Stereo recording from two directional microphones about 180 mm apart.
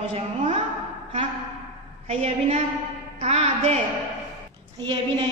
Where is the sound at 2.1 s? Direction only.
35° right (ahead or behind).